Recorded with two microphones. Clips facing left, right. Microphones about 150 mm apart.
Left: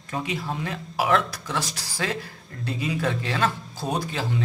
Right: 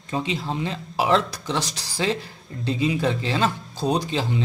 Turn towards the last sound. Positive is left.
turn(degrees=-20)  # may be behind; listen again after turning